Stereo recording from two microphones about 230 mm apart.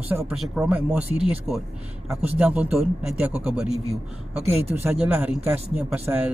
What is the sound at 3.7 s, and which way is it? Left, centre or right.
Speech, right.